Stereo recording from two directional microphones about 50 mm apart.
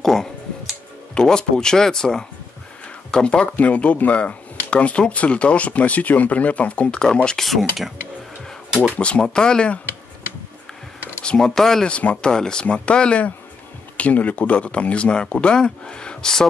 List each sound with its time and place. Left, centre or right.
0.0 s music: centre
3.1 s speech: centre
7.4 s speech: centre
8.6 s a sound: centre
8.9 s speech: left
11.2 s speech: centre
11.9 s speech: left